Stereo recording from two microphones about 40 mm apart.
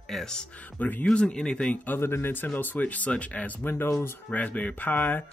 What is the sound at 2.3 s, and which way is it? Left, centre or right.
Speech, left.